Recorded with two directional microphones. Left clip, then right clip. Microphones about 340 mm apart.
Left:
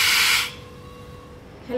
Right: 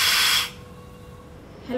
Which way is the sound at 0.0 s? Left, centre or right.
Centre.